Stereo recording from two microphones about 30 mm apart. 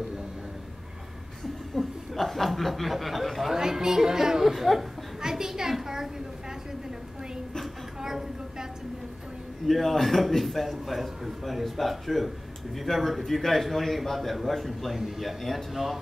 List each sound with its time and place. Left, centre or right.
1.4 s chuckle: centre
3.5 s speech: centre
4.5 s speech: centre
5.2 s a sound: centre
8.0 s a sound: centre
9.7 s speech: centre